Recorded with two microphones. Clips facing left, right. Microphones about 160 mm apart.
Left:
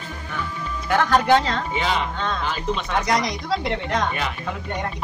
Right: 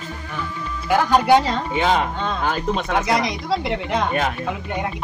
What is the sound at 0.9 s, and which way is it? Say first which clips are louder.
Speech: right 2 dB; 10° right (ahead or behind).